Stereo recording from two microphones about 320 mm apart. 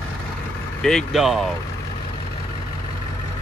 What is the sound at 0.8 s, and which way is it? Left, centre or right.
Speech, centre.